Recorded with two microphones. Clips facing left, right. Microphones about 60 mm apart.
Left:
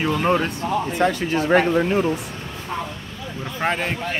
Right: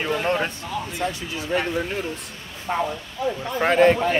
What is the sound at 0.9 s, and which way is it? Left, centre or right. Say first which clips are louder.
Speech: left 8 dB; left.